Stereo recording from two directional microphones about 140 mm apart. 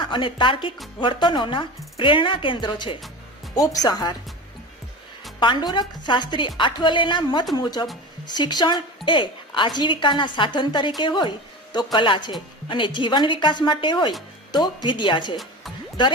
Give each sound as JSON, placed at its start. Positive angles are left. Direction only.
{"t": 0.0, "sound": "a woman's voice", "side_deg": 35}
{"t": 5.4, "sound": "a woman's voice", "side_deg": 35}